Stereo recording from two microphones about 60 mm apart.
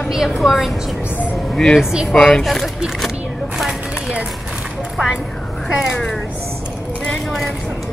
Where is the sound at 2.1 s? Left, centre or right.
Centre.